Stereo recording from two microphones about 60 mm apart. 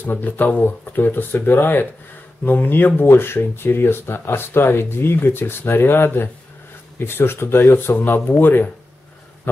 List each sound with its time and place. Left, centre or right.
0.0 s speech: left